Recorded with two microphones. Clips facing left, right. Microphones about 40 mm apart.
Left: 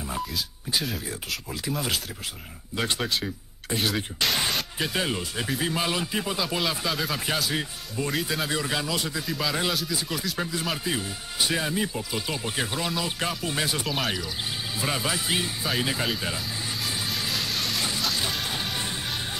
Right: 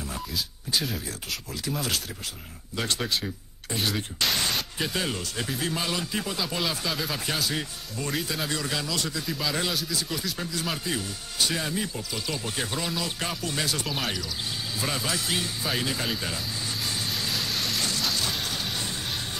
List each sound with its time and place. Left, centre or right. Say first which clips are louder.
1.5 s speech: left 1 dB; centre
4.5 s music: left 1 dB; centre
4.9 s speech: left 3 dB; centre
8.5 s speech: left 2 dB; centre
9.2 s speech: left 2 dB; centre
13.4 s speech: left 2 dB; centre
13.8 s speech: left 2 dB; centre
14.8 s speech: left 2 dB; centre
16.1 s speech: left 2 dB; centre
16.8 s vehicle: left 1 dB; centre
18.4 s music: left 1 dB; centre